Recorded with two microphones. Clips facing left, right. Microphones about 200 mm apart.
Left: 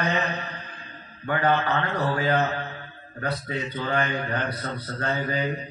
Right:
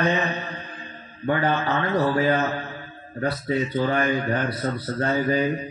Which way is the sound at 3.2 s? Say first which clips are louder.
Right 6 dB; 30° right (ahead or behind).